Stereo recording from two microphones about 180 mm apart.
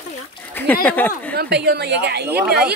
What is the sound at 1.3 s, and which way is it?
A woman's voice, 65° right (ahead or behind).